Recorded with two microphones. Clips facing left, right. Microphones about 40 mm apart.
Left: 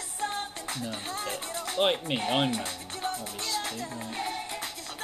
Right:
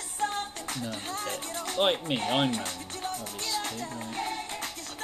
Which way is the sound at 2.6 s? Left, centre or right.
Left.